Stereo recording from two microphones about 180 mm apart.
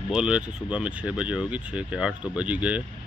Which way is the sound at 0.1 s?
5° right (ahead or behind).